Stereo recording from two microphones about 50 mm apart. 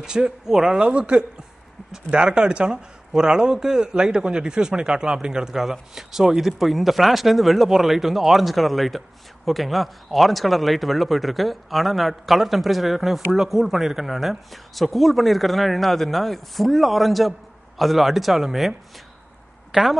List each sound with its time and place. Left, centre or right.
0.0 s a man's voice: centre